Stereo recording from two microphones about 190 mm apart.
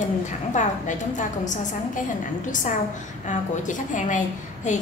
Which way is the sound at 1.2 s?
40° left (ahead or behind).